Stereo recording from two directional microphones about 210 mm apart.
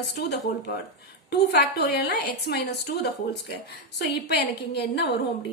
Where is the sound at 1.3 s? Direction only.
50° left (ahead or behind).